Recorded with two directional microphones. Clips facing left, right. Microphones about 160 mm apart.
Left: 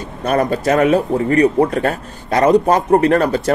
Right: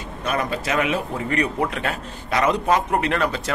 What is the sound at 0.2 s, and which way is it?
Speech, 45° left (ahead or behind).